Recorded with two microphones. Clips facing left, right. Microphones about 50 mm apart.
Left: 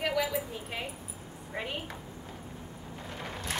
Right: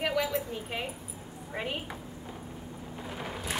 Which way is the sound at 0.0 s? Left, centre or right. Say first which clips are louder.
Right 1 dB; centre.